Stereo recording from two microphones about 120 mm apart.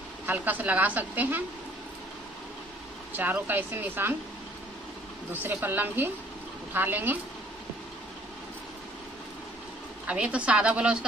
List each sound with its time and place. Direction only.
0.3 s a woman's voice: 15° right (ahead or behind)
3.2 s a woman's voice: 15° right (ahead or behind)
5.3 s a woman's voice: 15° right (ahead or behind)
10.0 s a woman's voice: 10° right (ahead or behind)